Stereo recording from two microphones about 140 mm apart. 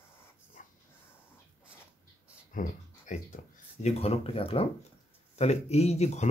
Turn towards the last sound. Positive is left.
turn(degrees=50)  # may be behind; listen again after turning